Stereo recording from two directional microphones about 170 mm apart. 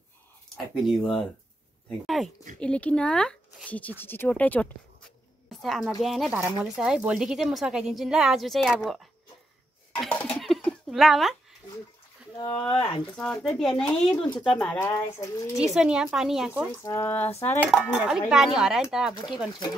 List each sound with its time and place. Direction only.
0.8 s speech: 5° left (ahead or behind)
2.0 s a sound: centre (ahead or behind)
2.6 s a woman's voice: 5° left (ahead or behind)
9.9 s laughter: 5° left (ahead or behind)
10.4 s a sound: centre (ahead or behind)
12.4 s speech: 30° left (ahead or behind)
13.1 s speech: 5° left (ahead or behind)
14.9 s speech: 20° left (ahead or behind)
15.6 s speech: 5° right (ahead or behind)
16.8 s speech: 15° left (ahead or behind)
17.3 s dishes: 40° left (ahead or behind)
17.6 s speech: centre (ahead or behind)
19.1 s speech: 25° left (ahead or behind)